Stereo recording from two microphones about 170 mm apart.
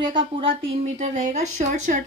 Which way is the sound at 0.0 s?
30° right (ahead or behind).